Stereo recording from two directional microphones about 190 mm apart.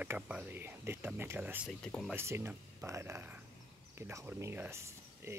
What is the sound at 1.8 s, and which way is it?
Speech, 5° left (ahead or behind).